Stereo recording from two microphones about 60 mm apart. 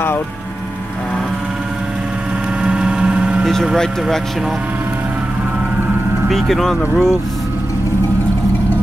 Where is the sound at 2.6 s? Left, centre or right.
Centre.